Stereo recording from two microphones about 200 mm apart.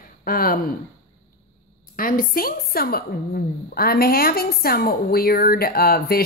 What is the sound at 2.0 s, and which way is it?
A woman's voice, 45° left (ahead or behind).